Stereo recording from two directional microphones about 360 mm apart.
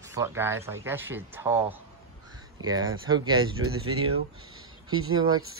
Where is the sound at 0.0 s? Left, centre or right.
Centre.